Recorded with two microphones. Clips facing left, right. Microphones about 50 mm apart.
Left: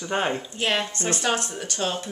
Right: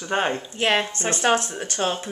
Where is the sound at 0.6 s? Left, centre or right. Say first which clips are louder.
Right 4 dB; right.